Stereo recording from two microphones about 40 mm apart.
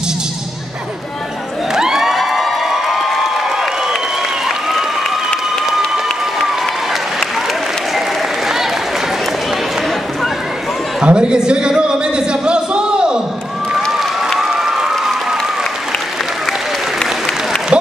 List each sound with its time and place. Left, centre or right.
1.7 s crowd: centre
11.1 s music: right